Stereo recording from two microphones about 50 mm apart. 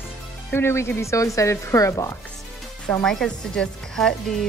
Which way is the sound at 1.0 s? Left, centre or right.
Left.